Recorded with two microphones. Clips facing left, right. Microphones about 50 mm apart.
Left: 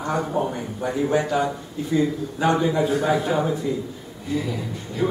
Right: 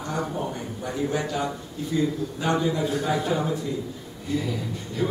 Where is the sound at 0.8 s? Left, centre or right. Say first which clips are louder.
Left 5 dB; centre.